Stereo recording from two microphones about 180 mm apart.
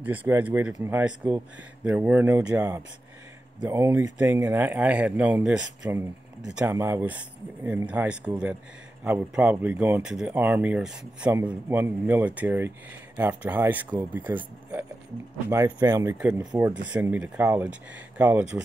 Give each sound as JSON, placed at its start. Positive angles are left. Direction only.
{"t": 0.0, "sound": "speech", "side_deg": -10}